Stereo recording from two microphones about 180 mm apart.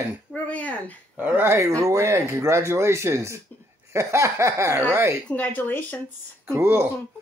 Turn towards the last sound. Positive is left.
turn(degrees=-15)  # may be behind; listen again after turning